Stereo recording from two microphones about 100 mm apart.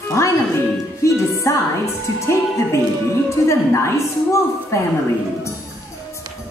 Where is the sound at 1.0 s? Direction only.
30° left (ahead or behind).